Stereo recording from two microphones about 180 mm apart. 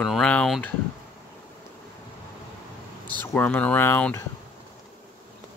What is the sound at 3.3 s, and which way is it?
Speech, 10° left (ahead or behind).